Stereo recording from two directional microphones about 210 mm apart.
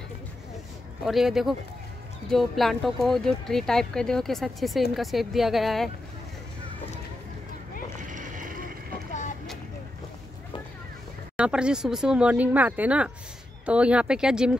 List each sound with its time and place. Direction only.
1.0 s speech: centre (ahead or behind)
8.1 s vehicle: 35° right (ahead or behind)
11.3 s speech: 5° right (ahead or behind)